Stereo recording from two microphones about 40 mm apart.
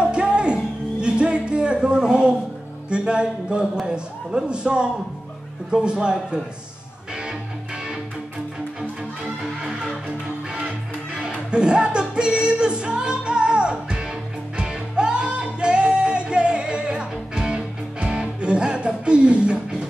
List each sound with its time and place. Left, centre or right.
0.0 s music: right
1.0 s a sound: right
2.9 s music: right
3.8 s speech: right
11.1 s music: right